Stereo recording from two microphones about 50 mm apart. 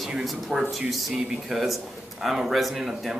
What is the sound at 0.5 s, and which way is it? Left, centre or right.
Speech, centre.